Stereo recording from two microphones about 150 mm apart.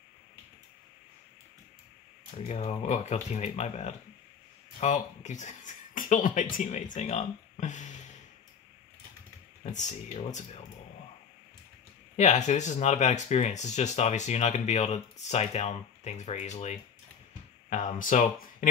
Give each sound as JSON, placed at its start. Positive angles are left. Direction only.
{"t": 2.3, "sound": "speech", "side_deg": 45}
{"t": 9.6, "sound": "speech", "side_deg": 50}
{"t": 12.2, "sound": "speech", "side_deg": 50}